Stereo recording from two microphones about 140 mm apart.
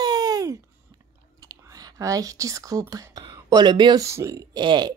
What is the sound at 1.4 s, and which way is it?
Speech, 25° right (ahead or behind).